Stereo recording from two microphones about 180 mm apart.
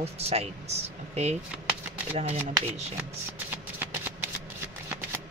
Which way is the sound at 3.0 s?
10° right (ahead or behind).